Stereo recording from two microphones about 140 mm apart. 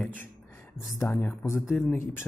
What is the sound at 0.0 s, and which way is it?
Music, 10° left (ahead or behind).